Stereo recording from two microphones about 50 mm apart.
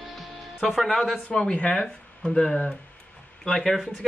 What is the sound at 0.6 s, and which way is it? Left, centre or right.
Speech, centre.